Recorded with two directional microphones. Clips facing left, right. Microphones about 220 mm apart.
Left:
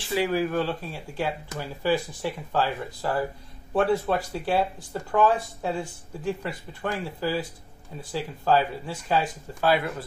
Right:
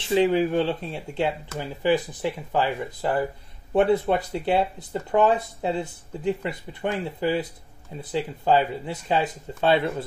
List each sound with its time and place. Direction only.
0.0 s speech: 20° right (ahead or behind)